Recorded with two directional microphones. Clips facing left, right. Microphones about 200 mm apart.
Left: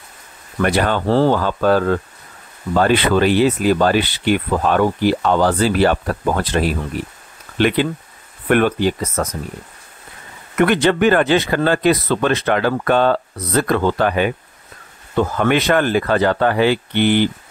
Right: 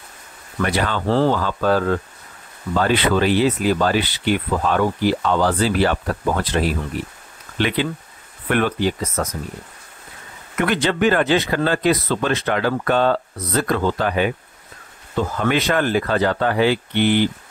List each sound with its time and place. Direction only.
0.6 s speech: 50° left (ahead or behind)
7.6 s speech: 55° left (ahead or behind)
10.6 s speech: 60° left (ahead or behind)